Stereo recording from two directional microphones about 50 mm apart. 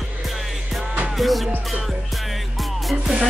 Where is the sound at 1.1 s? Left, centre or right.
Centre.